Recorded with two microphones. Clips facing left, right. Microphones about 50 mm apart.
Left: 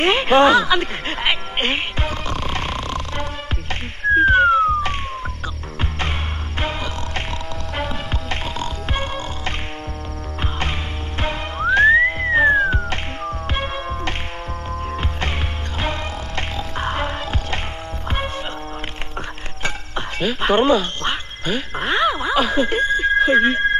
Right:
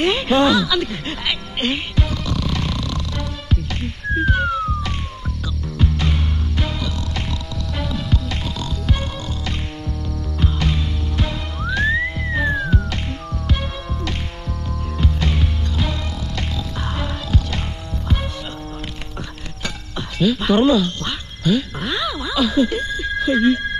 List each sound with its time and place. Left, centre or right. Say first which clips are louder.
0.0 s speech: left 2 dB; left
4.1 s music: left 7 dB; left
10.4 s music: right 3 dB; left
19.6 s quack: left 3 dB; left